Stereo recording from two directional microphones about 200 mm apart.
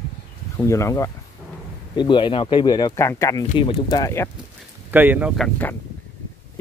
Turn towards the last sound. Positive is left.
turn(degrees=0)  # may be behind; listen again after turning